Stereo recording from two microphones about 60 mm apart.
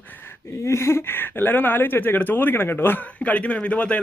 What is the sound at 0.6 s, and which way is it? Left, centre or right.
A man's voice, left.